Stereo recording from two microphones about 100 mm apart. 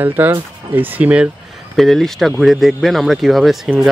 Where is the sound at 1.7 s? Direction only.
Centre (ahead or behind).